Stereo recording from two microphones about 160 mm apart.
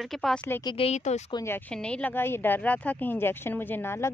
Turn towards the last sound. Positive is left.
turn(degrees=15)  # may be behind; listen again after turning